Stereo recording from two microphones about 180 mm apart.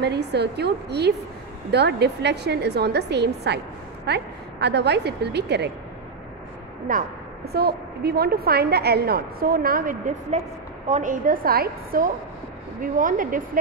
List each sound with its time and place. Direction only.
0.0 s a woman's voice: 65° right (ahead or behind)
6.9 s a woman's voice: 50° right (ahead or behind)